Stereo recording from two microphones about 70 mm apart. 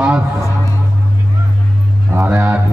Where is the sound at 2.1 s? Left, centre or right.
Right.